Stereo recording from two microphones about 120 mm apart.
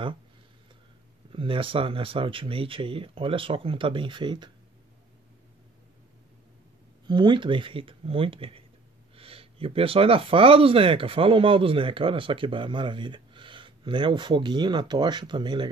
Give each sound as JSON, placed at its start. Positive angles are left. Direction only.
{"t": 1.3, "sound": "speech", "side_deg": -45}
{"t": 7.1, "sound": "speech", "side_deg": -40}